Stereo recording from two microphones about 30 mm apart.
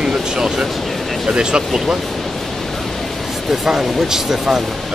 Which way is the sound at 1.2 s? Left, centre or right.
Right.